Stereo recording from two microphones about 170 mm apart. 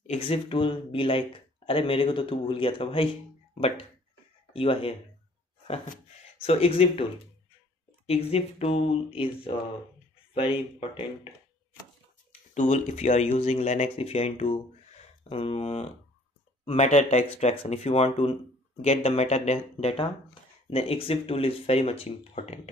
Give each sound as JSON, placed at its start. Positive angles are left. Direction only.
{"t": 0.0, "sound": "speech", "side_deg": 40}
{"t": 6.4, "sound": "speech", "side_deg": 35}
{"t": 8.1, "sound": "speech", "side_deg": 35}
{"t": 12.5, "sound": "speech", "side_deg": 45}